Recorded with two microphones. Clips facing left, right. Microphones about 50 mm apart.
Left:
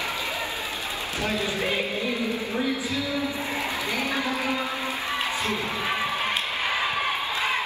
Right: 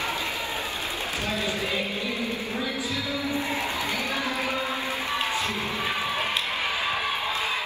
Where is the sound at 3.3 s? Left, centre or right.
Right.